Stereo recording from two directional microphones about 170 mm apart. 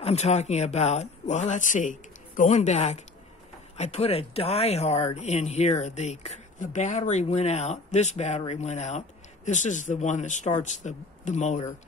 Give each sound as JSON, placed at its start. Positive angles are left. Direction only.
{"t": 0.0, "sound": "speech", "side_deg": 40}